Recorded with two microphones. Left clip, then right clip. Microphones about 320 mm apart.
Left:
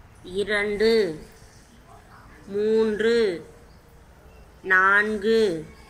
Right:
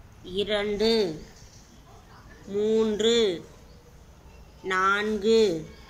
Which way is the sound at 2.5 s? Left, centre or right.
Centre.